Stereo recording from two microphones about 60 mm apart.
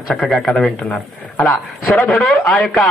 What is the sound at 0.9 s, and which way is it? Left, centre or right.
Speech, left.